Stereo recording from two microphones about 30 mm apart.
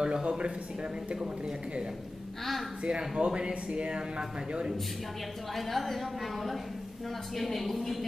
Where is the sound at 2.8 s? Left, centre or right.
Right.